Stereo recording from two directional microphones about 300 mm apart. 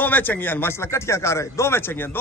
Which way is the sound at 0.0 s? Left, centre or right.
Centre.